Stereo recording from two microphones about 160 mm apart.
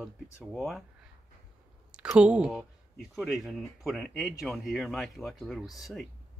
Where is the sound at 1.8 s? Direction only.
5° right (ahead or behind).